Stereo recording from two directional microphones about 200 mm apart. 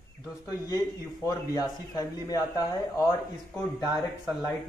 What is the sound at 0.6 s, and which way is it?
Speech, 20° left (ahead or behind).